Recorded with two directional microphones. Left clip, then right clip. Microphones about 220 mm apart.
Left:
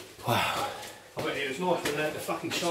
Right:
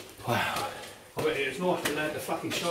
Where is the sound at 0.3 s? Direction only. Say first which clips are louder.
Left 1 dB; 25° left (ahead or behind).